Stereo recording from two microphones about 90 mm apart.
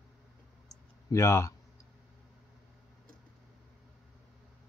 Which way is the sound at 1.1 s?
30° left (ahead or behind).